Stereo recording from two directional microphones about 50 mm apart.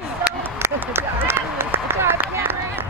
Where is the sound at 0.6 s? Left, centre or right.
Right.